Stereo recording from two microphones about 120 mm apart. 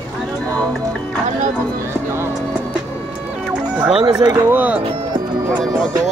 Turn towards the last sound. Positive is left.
turn(degrees=-15)  # may be behind; listen again after turning